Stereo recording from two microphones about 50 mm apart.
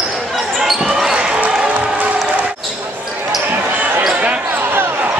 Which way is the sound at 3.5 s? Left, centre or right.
Right.